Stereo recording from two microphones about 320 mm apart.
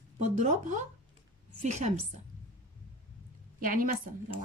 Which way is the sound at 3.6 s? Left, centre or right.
Right.